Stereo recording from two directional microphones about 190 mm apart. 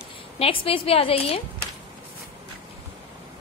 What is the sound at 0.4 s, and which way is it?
A woman's voice, 30° left (ahead or behind).